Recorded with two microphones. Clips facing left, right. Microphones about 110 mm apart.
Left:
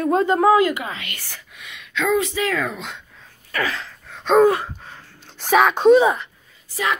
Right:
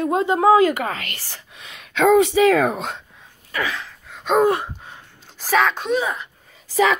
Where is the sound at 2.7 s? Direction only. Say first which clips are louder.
Right 5 dB; 45° right (ahead or behind).